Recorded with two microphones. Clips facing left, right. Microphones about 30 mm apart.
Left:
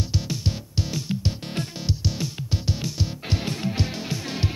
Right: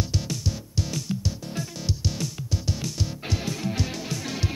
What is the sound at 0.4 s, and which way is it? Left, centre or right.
Music, left.